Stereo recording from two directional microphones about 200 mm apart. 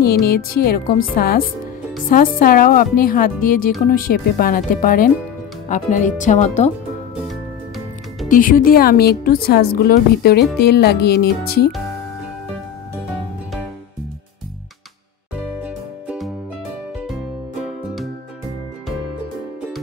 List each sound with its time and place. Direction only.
0.0 s speech: 50° left (ahead or behind); by 6.7 s 35° left (ahead or behind)
7.2 s music: centre (ahead or behind)
8.3 s speech: 40° left (ahead or behind)
15.6 s music: 5° right (ahead or behind)